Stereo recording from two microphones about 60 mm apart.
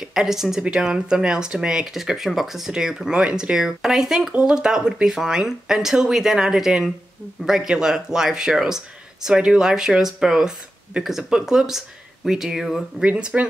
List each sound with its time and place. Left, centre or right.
0.0 s speech: centre
4.3 s speech: centre
13.0 s speech: centre